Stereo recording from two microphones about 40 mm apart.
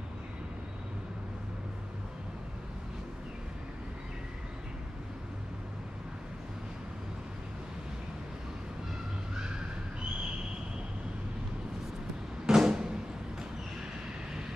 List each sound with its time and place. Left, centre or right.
12.4 s door: centre